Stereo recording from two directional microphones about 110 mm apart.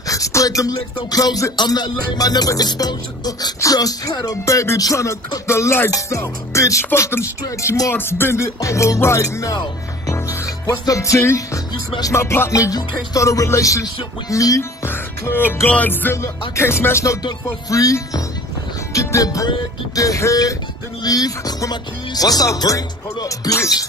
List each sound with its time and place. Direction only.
0.0 s music: 30° left (ahead or behind)
7.9 s music: 20° left (ahead or behind)
14.9 s music: 20° left (ahead or behind)